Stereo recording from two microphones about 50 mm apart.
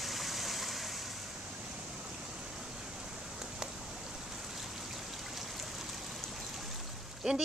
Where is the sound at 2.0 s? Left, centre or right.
Centre.